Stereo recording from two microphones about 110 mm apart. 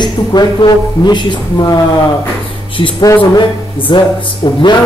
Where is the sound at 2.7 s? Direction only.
50° left (ahead or behind).